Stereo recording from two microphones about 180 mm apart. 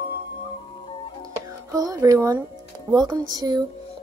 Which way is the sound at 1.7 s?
20° right (ahead or behind).